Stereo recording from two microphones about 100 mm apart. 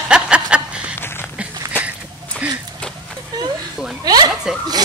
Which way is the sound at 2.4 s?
10° right (ahead or behind).